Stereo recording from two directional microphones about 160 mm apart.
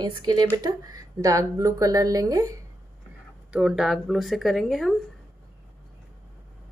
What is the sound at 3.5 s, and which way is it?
Speech, 5° right (ahead or behind).